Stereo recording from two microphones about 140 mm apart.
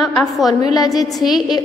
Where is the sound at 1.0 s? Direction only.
Centre (ahead or behind).